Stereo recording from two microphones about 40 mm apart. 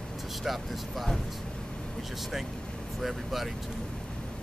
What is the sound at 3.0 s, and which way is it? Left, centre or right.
Speech, centre.